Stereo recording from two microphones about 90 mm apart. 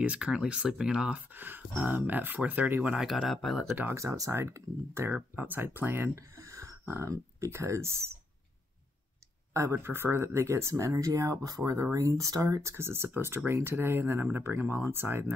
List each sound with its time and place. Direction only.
0.0 s speech: 10° right (ahead or behind)
3.0 s speech: centre (ahead or behind)
3.9 s speech: 35° right (ahead or behind)
6.1 s speech: 35° right (ahead or behind)
9.5 s speech: 30° right (ahead or behind)